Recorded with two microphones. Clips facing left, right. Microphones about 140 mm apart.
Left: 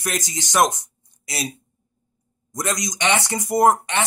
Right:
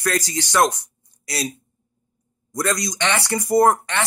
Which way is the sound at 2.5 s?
20° left (ahead or behind).